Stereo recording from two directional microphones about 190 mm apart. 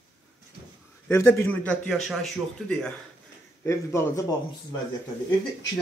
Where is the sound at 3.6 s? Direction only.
15° left (ahead or behind).